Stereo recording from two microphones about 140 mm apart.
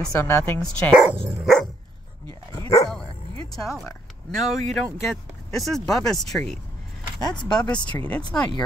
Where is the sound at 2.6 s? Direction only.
20° left (ahead or behind).